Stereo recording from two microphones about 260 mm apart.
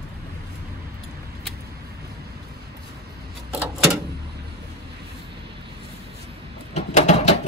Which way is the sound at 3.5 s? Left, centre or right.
Centre.